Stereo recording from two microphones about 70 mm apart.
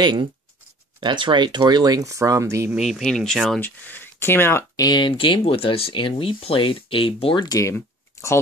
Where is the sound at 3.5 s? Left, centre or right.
Left.